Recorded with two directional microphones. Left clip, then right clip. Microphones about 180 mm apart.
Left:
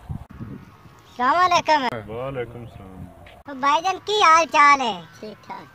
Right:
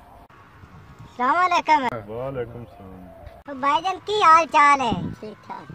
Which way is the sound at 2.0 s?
5° right (ahead or behind).